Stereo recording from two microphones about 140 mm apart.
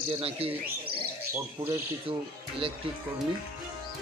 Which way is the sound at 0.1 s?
40° right (ahead or behind).